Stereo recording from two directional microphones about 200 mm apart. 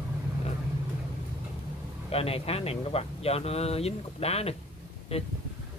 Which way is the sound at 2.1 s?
30° left (ahead or behind).